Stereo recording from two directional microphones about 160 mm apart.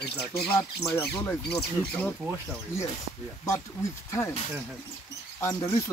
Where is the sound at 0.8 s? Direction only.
15° left (ahead or behind).